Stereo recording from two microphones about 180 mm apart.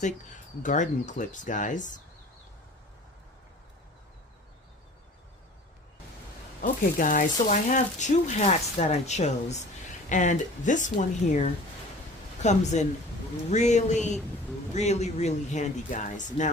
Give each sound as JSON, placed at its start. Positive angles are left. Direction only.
{"t": 0.0, "sound": "speech", "side_deg": 45}
{"t": 6.6, "sound": "speech", "side_deg": 45}